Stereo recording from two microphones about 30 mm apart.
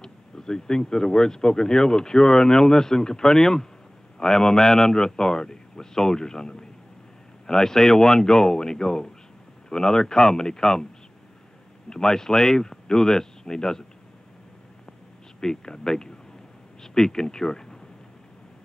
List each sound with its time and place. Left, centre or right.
0.0 s speech: left
11.9 s speech: centre
15.4 s speech: left